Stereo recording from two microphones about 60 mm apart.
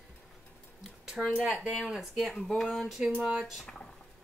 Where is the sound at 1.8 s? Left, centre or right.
Centre.